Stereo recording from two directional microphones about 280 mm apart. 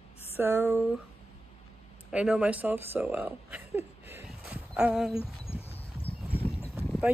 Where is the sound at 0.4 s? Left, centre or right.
Centre.